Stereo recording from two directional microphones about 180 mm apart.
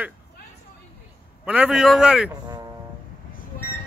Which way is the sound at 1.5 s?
5° right (ahead or behind).